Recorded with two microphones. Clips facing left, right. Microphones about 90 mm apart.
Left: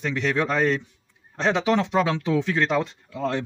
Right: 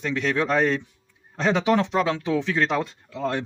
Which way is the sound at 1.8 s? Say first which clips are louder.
Even; 5° left (ahead or behind).